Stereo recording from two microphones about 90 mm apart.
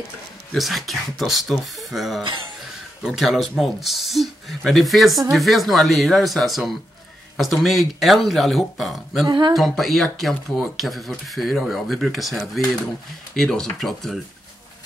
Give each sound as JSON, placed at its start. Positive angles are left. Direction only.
{"t": 0.6, "sound": "speech", "side_deg": 0}
{"t": 9.3, "sound": "speech", "side_deg": -55}
{"t": 9.6, "sound": "speech", "side_deg": 0}